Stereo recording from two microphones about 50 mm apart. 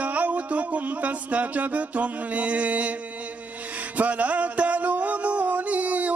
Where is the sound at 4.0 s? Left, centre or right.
Right.